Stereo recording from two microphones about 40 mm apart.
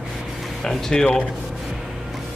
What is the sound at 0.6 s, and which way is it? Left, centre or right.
Speech, centre.